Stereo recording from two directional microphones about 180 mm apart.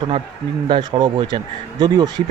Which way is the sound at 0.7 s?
25° right (ahead or behind).